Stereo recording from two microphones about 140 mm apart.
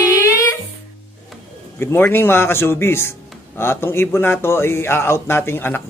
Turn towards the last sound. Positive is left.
turn(degrees=15)  # may be behind; listen again after turning